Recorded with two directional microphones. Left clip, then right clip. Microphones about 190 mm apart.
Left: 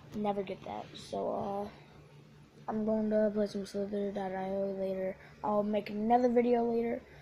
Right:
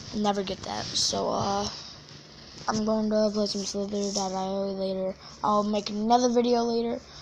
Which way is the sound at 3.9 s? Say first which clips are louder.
Right 7 dB; 10° right (ahead or behind).